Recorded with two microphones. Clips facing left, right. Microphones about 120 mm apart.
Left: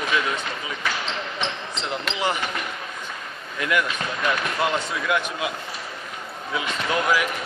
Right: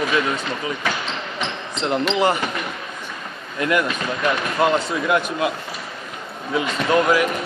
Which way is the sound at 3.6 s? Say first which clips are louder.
Right 4 dB; 40° right (ahead or behind).